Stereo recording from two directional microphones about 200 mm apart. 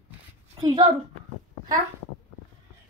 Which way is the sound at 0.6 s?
20° right (ahead or behind).